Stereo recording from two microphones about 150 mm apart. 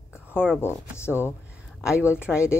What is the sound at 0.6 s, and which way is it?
Speech, 15° left (ahead or behind).